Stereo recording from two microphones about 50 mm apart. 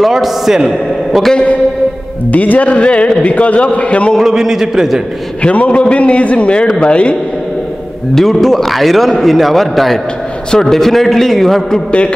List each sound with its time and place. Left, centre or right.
0.0 s a man's voice: centre
2.3 s a man's voice: left
4.2 s a man's voice: centre
5.4 s a man's voice: left
8.1 s a man's voice: centre